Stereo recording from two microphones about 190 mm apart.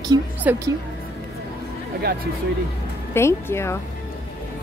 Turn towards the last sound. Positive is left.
turn(degrees=15)  # may be behind; listen again after turning